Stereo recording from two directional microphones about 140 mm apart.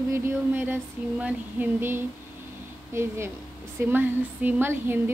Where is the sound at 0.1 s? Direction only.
15° right (ahead or behind).